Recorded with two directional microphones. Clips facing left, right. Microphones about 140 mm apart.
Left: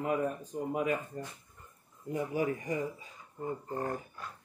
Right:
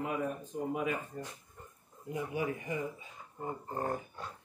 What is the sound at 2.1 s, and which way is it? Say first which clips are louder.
Speech: left 3 dB; 45° left (ahead or behind).